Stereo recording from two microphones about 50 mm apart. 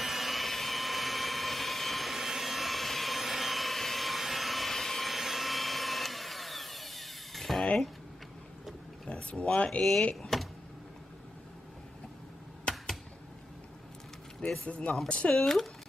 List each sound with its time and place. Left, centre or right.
0.0 s jet engine: centre
9.0 s a sound: left
9.6 s speech: left
10.2 s a sound: centre
14.7 s speech: left
15.3 s speech: centre